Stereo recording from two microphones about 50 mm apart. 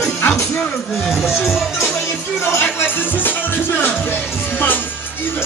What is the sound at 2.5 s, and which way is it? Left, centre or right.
Music, left.